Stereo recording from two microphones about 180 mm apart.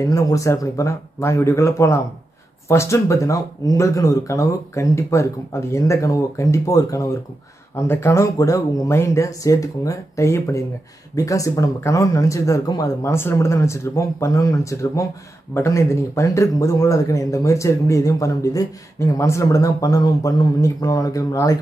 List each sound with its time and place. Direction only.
0.1 s speech: 15° left (ahead or behind)